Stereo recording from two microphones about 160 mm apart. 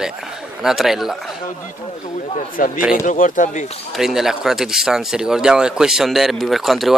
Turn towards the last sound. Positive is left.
turn(degrees=0)  # may be behind; listen again after turning